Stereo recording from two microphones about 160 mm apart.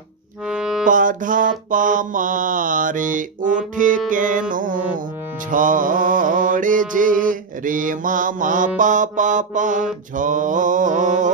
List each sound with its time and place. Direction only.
0.5 s music: 5° right (ahead or behind)
0.8 s mantra: 55° right (ahead or behind)
4.1 s music: 55° right (ahead or behind)
10.1 s mantra: 55° right (ahead or behind)